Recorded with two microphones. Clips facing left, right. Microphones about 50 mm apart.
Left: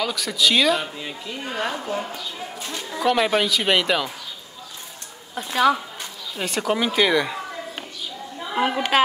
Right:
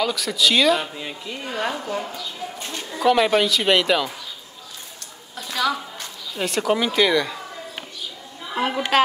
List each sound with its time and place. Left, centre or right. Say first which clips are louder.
0.0 s speech: right 1 dB; centre
5.3 s speech: left 5 dB; left
6.3 s speech: right 2 dB; centre
8.5 s a woman's voice: even; centre